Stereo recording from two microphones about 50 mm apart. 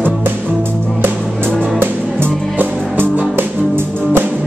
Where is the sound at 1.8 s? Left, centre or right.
Right.